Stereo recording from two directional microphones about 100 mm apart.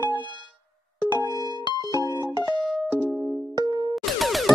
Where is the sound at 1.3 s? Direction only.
40° left (ahead or behind).